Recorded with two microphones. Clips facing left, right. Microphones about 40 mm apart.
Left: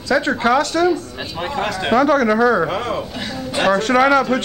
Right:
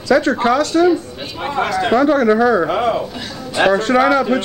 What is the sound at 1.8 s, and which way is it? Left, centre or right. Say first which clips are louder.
Speech: right 1 dB; centre.